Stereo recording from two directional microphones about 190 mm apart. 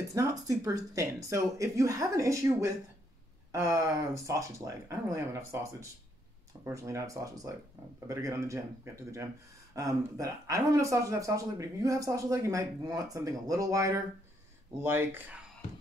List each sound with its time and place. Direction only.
0.1 s speech: 15° right (ahead or behind)